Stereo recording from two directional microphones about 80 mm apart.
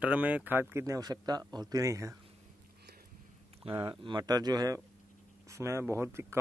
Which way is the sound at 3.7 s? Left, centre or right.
Right.